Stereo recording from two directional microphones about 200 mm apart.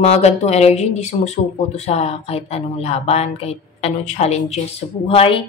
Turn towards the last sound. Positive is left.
turn(degrees=30)  # may be behind; listen again after turning